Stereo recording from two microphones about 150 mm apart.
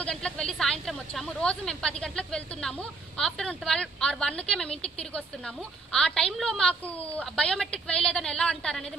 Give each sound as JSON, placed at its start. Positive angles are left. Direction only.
{"t": 0.0, "sound": "speech", "side_deg": 5}
{"t": 4.6, "sound": "speech", "side_deg": 40}
{"t": 5.1, "sound": "speech", "side_deg": 5}